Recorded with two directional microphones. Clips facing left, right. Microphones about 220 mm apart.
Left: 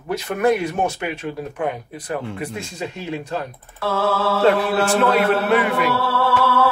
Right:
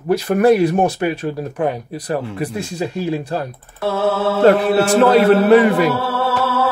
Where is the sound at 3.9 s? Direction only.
25° right (ahead or behind).